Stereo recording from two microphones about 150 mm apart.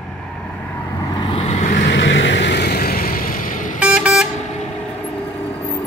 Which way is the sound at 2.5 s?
90° left.